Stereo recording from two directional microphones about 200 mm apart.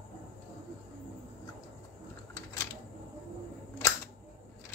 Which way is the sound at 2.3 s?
15° left (ahead or behind).